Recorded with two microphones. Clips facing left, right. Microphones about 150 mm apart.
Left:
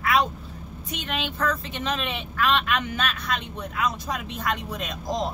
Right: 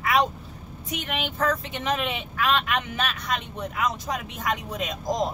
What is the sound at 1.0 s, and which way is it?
Speech, 15° right (ahead or behind).